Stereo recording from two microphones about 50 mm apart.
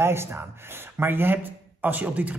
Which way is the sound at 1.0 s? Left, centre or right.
Right.